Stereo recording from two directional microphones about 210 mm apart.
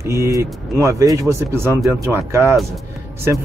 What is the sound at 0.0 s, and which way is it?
Speech, 15° right (ahead or behind).